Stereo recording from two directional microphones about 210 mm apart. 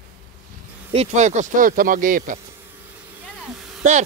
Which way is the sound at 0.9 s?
35° right (ahead or behind).